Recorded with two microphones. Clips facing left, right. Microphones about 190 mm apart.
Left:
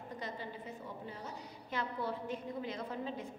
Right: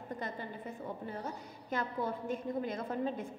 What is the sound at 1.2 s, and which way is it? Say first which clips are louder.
A woman's voice: right 4 dB; 50° right (ahead or behind).